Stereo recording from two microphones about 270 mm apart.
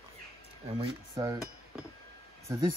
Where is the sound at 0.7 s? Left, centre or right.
Centre.